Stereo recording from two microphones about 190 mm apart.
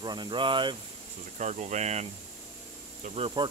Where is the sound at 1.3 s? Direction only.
40° right (ahead or behind).